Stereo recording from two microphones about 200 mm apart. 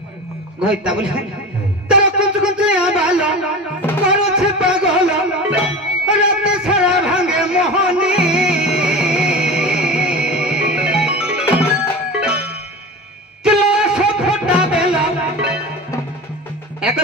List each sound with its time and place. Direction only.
0.7 s a man's voice: 5° right (ahead or behind)
1.9 s music: 5° right (ahead or behind)
6.0 s a sound: 5° right (ahead or behind)
13.4 s music: 5° right (ahead or behind)